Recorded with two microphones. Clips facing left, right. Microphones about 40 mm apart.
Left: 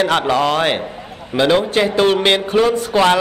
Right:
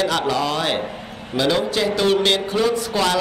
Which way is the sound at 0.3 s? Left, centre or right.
Left.